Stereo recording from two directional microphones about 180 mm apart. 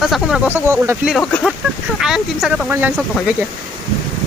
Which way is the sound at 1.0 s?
Centre (ahead or behind).